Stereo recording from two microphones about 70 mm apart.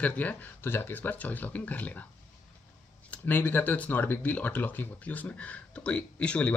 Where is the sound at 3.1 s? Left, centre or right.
Left.